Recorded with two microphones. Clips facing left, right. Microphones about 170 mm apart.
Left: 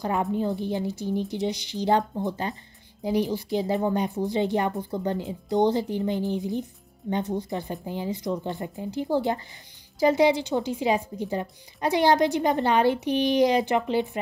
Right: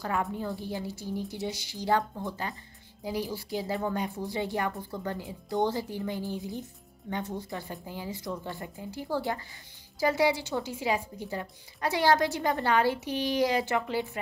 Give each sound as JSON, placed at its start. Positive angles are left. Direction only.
{"t": 0.0, "sound": "a woman's voice", "side_deg": 20}